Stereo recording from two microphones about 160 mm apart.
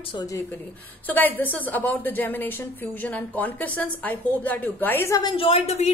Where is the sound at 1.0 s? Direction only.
10° left (ahead or behind).